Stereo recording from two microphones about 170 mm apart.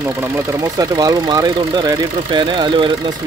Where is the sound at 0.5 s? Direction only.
20° right (ahead or behind).